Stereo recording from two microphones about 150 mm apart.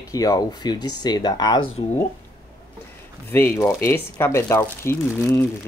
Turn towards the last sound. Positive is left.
turn(degrees=15)  # may be behind; listen again after turning